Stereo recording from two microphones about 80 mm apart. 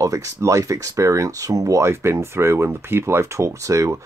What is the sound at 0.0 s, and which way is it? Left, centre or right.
Speech, right.